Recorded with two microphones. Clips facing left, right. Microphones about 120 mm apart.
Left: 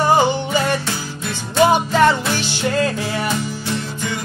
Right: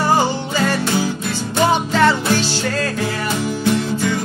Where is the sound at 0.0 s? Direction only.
15° left (ahead or behind).